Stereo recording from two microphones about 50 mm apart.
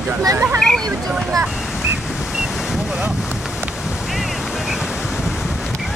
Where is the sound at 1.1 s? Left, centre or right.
Right.